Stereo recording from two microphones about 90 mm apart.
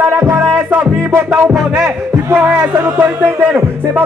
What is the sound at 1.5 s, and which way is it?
Music, 5° right (ahead or behind).